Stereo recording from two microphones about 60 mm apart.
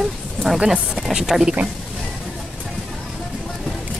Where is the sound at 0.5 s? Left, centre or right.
Centre.